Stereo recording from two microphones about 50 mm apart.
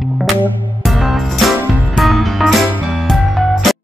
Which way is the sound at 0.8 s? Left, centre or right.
Centre.